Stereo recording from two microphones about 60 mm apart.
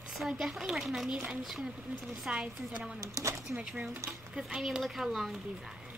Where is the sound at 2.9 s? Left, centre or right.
Right.